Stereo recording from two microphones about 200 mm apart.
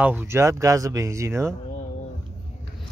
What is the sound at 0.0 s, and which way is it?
Speech, 10° right (ahead or behind).